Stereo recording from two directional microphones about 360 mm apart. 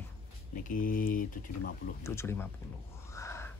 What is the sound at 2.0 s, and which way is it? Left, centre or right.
Speech, centre.